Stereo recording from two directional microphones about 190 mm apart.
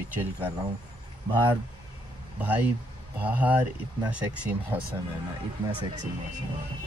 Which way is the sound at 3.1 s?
10° right (ahead or behind).